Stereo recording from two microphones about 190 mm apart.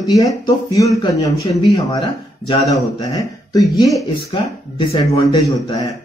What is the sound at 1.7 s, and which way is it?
Speech, 20° left (ahead or behind).